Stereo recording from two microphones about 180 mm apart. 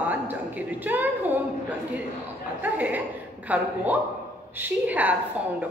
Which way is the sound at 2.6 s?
10° right (ahead or behind).